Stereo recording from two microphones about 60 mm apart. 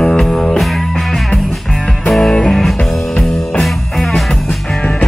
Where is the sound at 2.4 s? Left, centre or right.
Centre.